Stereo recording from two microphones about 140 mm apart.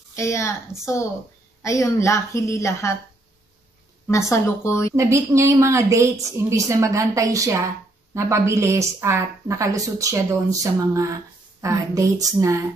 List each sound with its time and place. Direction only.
0.1 s a woman's voice: 20° left (ahead or behind)
4.1 s a woman's voice: 20° left (ahead or behind)
4.9 s a woman's voice: 20° right (ahead or behind)